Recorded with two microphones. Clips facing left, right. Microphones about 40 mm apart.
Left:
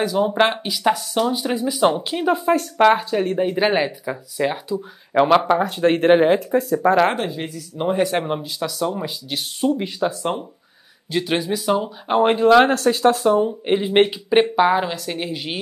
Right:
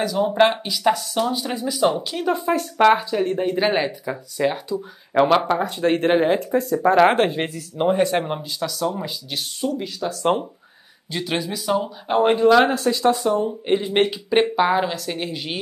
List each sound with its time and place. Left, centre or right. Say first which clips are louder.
0.0 s speech: even; centre
1.8 s speech: left 1 dB; left
2.3 s speech: left 3 dB; centre
7.2 s speech: right 5 dB; right
7.9 s speech: left 1 dB; centre
9.7 s speech: left 5 dB; left
11.1 s speech: left 4 dB; centre
12.8 s speech: left 3 dB; left
13.5 s speech: left 1 dB; centre